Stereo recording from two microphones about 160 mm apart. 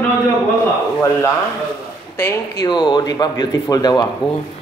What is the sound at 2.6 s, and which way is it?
Speech, 30° left (ahead or behind).